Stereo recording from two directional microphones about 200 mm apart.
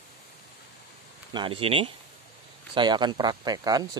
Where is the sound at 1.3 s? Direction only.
25° right (ahead or behind).